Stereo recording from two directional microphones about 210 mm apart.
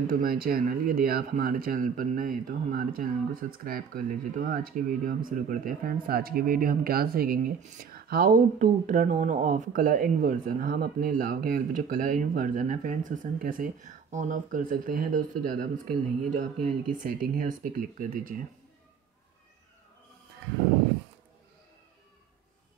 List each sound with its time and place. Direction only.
0.1 s speech: 45° right (ahead or behind)